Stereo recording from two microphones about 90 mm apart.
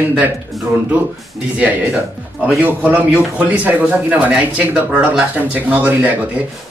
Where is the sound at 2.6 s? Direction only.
20° right (ahead or behind).